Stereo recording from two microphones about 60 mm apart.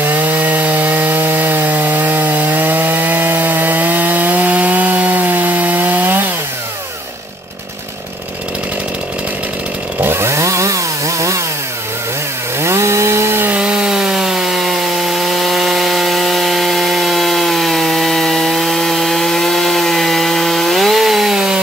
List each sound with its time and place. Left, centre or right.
0.0 s wood: right
10.0 s chainsaw: right
12.5 s chainsaw: right
13.6 s wood: centre